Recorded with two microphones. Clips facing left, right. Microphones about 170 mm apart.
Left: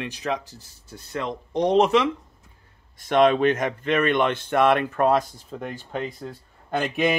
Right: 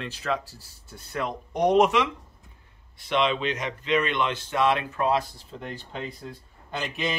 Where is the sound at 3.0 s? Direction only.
45° left (ahead or behind).